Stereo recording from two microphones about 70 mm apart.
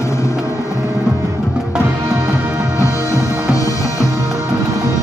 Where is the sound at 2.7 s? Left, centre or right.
Left.